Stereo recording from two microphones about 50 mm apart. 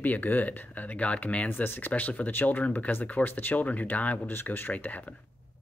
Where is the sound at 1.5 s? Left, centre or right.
Left.